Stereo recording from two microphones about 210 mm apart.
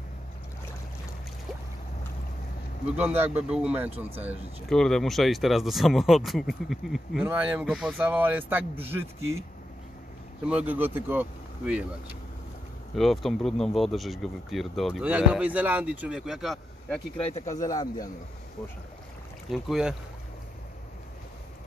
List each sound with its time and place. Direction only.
3.0 s speech: 5° right (ahead or behind)
10.4 s speech: 5° right (ahead or behind)
12.9 s speech: centre (ahead or behind)
17.5 s speech: 15° left (ahead or behind)
19.5 s speech: centre (ahead or behind)